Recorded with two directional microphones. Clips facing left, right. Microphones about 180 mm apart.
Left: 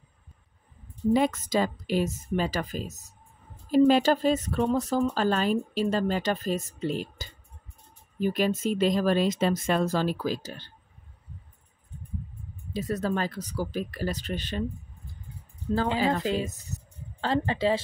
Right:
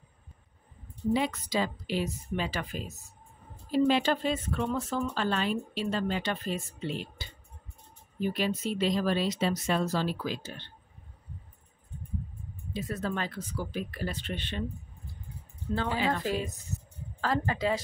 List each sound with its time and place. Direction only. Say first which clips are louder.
1.1 s speech: left 5 dB; 45° left (ahead or behind)
12.7 s speech: left 5 dB; 40° left (ahead or behind)
16.1 s a woman's voice: left 3 dB; 25° left (ahead or behind)